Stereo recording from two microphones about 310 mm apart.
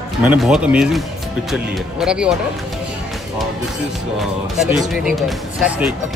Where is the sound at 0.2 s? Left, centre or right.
Centre.